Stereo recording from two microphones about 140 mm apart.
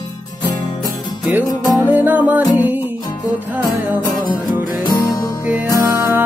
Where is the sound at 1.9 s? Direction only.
10° right (ahead or behind).